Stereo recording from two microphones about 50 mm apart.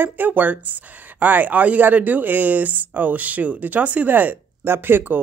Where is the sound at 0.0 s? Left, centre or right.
Right.